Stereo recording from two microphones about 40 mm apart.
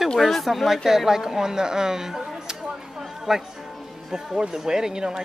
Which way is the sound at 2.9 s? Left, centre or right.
Centre.